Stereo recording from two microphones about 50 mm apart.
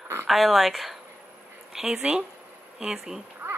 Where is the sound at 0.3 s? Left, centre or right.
Centre.